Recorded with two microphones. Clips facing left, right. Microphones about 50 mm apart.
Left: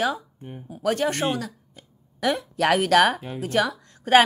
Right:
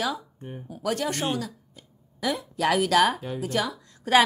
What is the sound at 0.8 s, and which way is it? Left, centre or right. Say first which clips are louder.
A woman's voice: left 4 dB; left.